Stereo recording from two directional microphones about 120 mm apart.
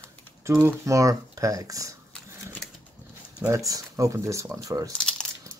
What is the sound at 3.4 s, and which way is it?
Speech, 30° right (ahead or behind).